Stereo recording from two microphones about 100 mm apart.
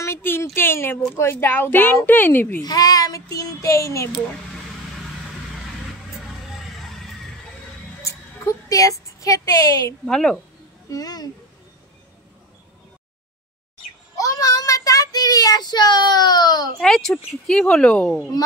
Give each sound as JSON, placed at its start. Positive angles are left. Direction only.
{"t": 0.0, "sound": "a sound", "side_deg": 25}
{"t": 0.6, "sound": "speech", "side_deg": 25}
{"t": 2.6, "sound": "a child's voice", "side_deg": 40}
{"t": 6.8, "sound": "neigh", "side_deg": 0}
{"t": 8.6, "sound": "a woman's voice", "side_deg": 35}
{"t": 10.0, "sound": "speech", "side_deg": 5}
{"t": 10.9, "sound": "speech", "side_deg": 40}
{"t": 14.1, "sound": "child singing", "side_deg": 35}
{"t": 16.8, "sound": "speech", "side_deg": 5}